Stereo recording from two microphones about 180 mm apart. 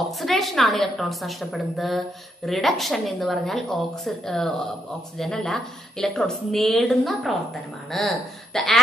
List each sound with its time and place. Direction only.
0.1 s a woman's voice: centre (ahead or behind)